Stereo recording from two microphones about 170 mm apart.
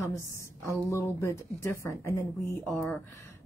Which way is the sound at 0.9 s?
15° left (ahead or behind).